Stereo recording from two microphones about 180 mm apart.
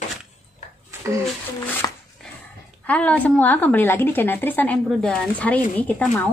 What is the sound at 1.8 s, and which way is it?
Dog, 15° left (ahead or behind).